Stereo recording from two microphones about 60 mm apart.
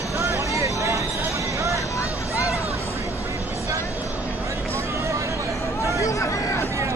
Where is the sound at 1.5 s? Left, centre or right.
Right.